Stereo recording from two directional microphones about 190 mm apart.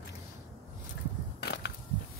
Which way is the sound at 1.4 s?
60° left (ahead or behind).